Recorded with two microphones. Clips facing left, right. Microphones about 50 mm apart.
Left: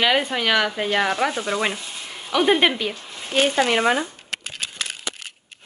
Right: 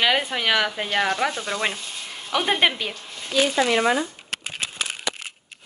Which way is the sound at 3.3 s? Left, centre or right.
Left.